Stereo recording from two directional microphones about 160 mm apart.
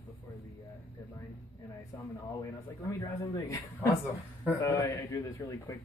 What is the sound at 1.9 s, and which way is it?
Speech, 20° left (ahead or behind).